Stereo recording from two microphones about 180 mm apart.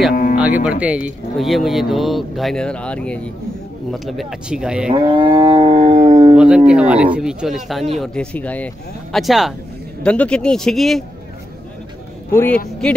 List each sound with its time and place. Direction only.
0.1 s music: 50° left (ahead or behind)
0.4 s speech: 10° right (ahead or behind)
4.9 s wild animals: 25° right (ahead or behind)
6.3 s speech: 5° right (ahead or behind)
12.3 s a man's voice: 10° left (ahead or behind)